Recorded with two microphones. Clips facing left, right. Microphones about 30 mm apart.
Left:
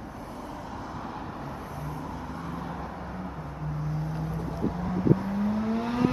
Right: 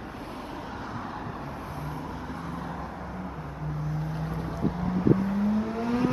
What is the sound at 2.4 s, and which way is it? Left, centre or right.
Vehicle, centre.